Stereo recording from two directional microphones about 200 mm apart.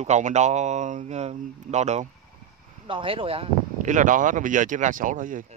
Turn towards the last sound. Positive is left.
turn(degrees=-40)  # may be behind; listen again after turning